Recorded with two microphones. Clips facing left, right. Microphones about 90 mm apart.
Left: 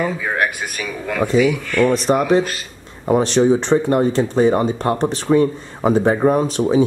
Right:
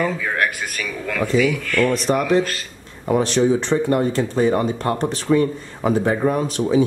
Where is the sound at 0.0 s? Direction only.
20° left (ahead or behind).